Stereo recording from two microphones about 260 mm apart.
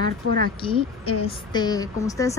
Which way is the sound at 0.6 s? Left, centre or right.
Centre.